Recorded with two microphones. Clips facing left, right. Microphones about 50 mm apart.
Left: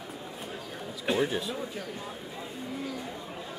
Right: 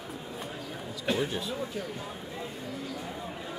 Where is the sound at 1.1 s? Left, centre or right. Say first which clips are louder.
Left 2 dB; centre.